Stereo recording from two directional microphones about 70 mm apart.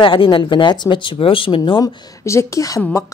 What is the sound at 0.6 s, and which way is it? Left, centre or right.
Speech, left.